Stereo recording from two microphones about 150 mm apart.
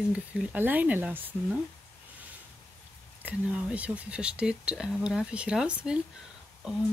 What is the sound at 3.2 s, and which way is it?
Speech, 10° right (ahead or behind).